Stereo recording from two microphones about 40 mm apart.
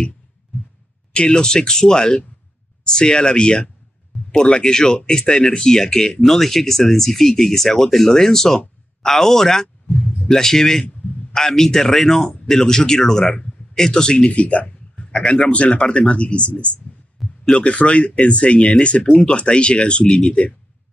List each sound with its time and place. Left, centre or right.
1.1 s a man's voice: left
17.2 s heart sounds: centre
17.6 s speech: left